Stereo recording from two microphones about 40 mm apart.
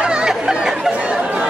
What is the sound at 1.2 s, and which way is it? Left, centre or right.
Chatter, right.